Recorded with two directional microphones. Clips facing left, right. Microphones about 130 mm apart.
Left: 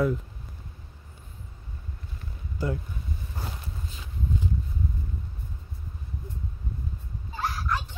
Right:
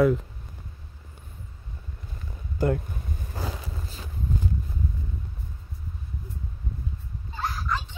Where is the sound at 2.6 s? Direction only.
55° right (ahead or behind).